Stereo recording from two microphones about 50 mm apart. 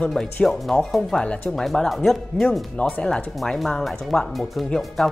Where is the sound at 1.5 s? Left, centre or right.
Centre.